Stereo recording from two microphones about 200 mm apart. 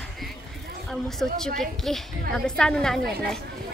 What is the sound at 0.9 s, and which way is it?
Speech, centre (ahead or behind).